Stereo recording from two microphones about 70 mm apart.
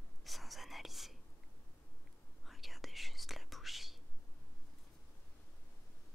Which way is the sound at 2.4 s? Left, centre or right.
Centre.